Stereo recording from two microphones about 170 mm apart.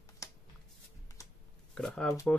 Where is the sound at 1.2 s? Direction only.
20° left (ahead or behind).